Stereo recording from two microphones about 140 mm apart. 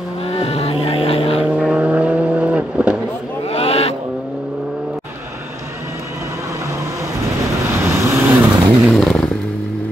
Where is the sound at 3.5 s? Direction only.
45° left (ahead or behind).